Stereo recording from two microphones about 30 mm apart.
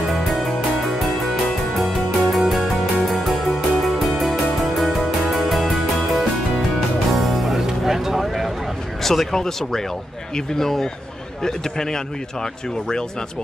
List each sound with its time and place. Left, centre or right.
0.1 s music: centre
7.8 s vehicle: centre
9.0 s a man's voice: centre